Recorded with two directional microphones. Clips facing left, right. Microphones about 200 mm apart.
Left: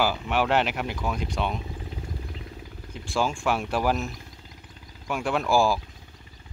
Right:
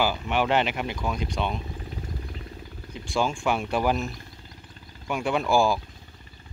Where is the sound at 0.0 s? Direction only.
5° left (ahead or behind).